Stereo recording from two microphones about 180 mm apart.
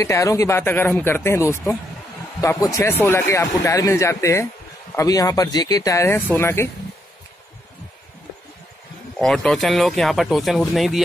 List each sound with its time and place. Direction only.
0.0 s speech: 15° left (ahead or behind)
9.2 s speech: centre (ahead or behind)